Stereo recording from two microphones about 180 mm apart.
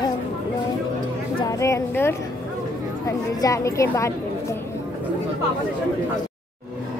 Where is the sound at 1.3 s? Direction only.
20° left (ahead or behind).